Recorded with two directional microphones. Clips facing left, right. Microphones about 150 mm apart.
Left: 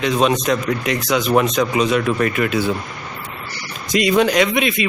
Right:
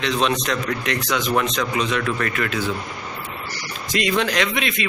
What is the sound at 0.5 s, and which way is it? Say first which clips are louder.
A man's voice: left 5 dB; 10° left (ahead or behind).